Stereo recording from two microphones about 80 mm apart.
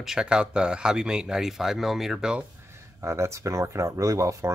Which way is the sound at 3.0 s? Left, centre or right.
Right.